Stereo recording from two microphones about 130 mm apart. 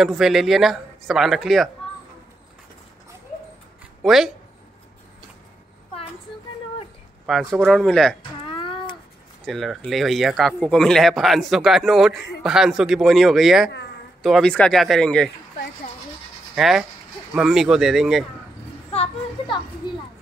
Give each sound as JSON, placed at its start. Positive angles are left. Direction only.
{"t": 0.0, "sound": "a man's voice", "side_deg": 0}
{"t": 4.0, "sound": "speech", "side_deg": 0}
{"t": 7.2, "sound": "a man's voice", "side_deg": 0}
{"t": 8.5, "sound": "a sound", "side_deg": 40}
{"t": 9.5, "sound": "a man's voice", "side_deg": 0}
{"t": 16.5, "sound": "a man's voice", "side_deg": -5}
{"t": 18.9, "sound": "a sound", "side_deg": 45}